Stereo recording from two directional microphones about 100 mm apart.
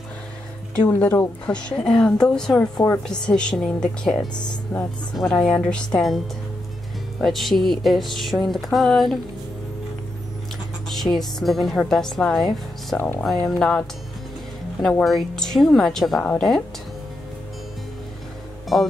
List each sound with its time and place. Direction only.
0.8 s a woman's voice: 20° left (ahead or behind); by 9.2 s centre (ahead or behind)
10.9 s speech: centre (ahead or behind)
13.2 s speech: centre (ahead or behind)
18.7 s speech: centre (ahead or behind)